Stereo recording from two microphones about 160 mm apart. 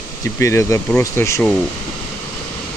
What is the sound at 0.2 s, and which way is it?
Speech, 20° left (ahead or behind).